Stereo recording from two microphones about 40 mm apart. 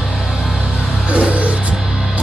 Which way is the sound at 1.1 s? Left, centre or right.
Right.